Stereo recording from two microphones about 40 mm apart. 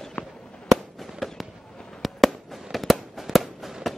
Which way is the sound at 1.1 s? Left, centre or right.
Centre.